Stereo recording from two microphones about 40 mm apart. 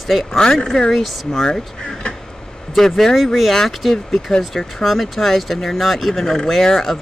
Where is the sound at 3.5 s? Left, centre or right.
Centre.